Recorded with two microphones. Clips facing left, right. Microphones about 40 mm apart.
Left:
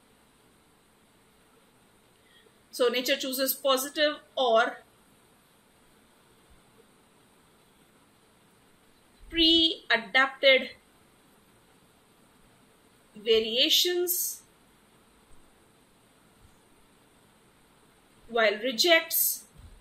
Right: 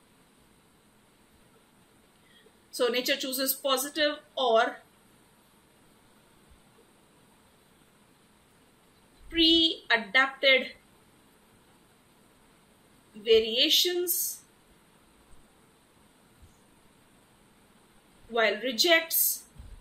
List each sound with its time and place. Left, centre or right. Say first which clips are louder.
2.7 s a woman's voice: left 1 dB; centre
9.3 s a sound: even; centre
10.1 s a woman's voice: left 2 dB; centre
13.2 s a woman's voice: right 1 dB; centre
18.6 s a woman's voice: left 1 dB; centre